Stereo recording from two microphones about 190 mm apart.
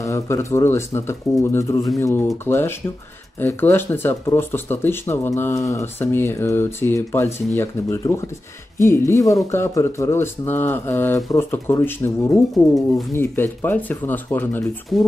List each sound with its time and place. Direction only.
0.0 s speech: 15° left (ahead or behind)
12.5 s speech: centre (ahead or behind)
13.1 s speech: 15° left (ahead or behind)